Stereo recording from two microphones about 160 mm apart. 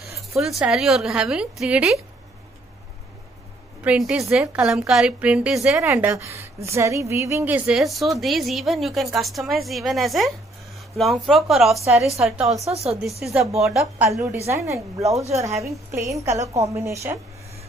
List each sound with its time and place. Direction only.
0.3 s a woman's voice: centre (ahead or behind)
3.8 s a woman's voice: 10° right (ahead or behind)
12.6 s speech: 40° right (ahead or behind)
13.2 s a woman's voice: 5° right (ahead or behind)
14.1 s a woman's voice: 20° right (ahead or behind)